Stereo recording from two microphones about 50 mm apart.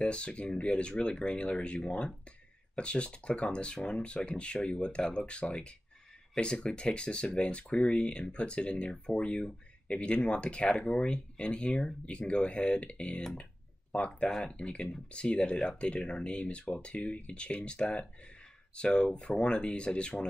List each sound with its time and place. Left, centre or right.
0.0 s speech: left